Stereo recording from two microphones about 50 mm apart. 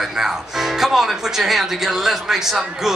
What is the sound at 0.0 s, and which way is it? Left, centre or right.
Speech, centre.